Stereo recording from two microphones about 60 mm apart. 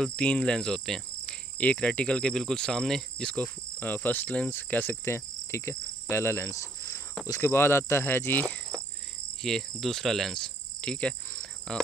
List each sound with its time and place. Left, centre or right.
0.0 s speech: centre
1.6 s speech: left
3.3 s cricket: left
6.5 s cricket: left
7.4 s cricket: left
9.4 s cricket: centre